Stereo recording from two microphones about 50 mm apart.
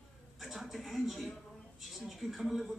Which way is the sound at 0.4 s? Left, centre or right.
Centre.